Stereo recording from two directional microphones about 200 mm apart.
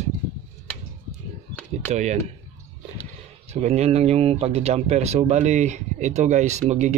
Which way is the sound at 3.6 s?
30° right (ahead or behind).